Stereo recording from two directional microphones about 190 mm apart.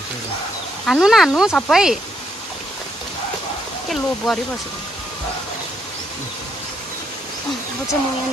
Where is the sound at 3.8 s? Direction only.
Centre (ahead or behind).